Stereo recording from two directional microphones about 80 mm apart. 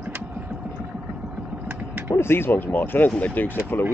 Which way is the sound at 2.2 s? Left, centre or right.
Left.